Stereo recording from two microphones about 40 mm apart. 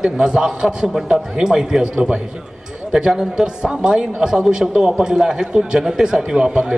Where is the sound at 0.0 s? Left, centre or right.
Centre.